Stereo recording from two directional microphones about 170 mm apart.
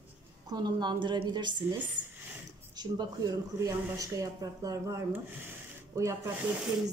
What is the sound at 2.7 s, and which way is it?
Speech, 25° right (ahead or behind).